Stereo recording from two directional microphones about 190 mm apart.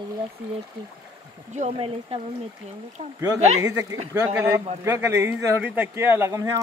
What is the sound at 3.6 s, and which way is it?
Speech, 15° right (ahead or behind).